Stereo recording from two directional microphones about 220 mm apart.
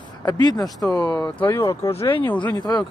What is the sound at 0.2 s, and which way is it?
Speech, 15° left (ahead or behind).